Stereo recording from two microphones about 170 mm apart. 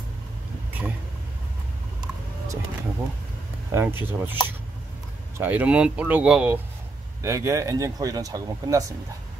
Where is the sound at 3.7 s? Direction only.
15° right (ahead or behind).